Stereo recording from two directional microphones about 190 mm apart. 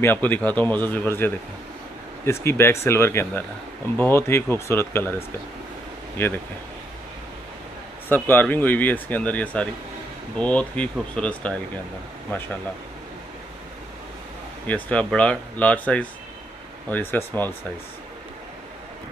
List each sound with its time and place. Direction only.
0.0 s speech: 10° left (ahead or behind)
6.2 s speech: 10° left (ahead or behind)
8.1 s speech: 10° left (ahead or behind)
14.7 s speech: 5° left (ahead or behind)